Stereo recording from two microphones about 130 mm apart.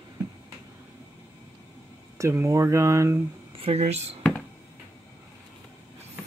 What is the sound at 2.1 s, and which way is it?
Speech, 20° right (ahead or behind).